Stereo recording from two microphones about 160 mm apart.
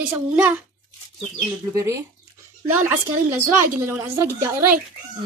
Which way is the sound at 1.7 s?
20° right (ahead or behind).